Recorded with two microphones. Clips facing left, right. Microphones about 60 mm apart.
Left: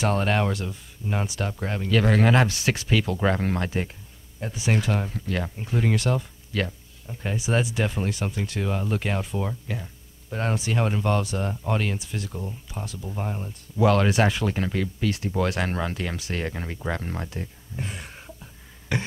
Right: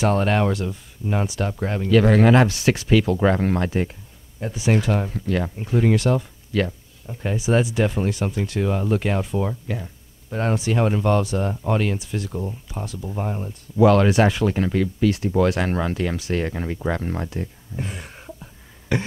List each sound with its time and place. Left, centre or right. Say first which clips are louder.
0.0 s speech: right 4 dB; right